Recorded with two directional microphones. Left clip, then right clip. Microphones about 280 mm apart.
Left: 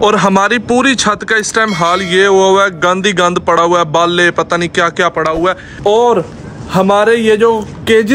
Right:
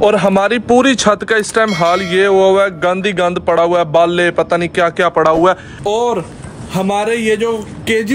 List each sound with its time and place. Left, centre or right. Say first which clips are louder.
0.0 s speech: left 1 dB; centre
5.9 s speech: left 6 dB; left
6.8 s speech: left 6 dB; centre